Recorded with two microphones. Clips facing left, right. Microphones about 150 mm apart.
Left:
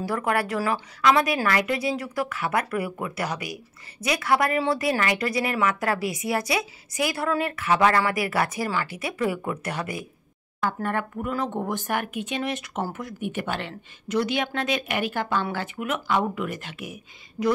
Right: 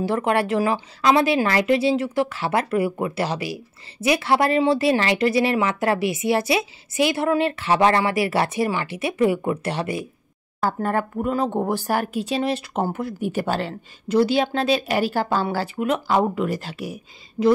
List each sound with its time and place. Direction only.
0.0 s speech: 25° right (ahead or behind)